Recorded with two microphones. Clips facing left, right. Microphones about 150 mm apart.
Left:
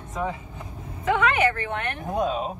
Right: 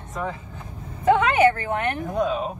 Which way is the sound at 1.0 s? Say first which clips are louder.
Right 5 dB; 35° right (ahead or behind).